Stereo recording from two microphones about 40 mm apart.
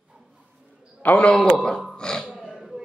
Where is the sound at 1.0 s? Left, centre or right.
Left.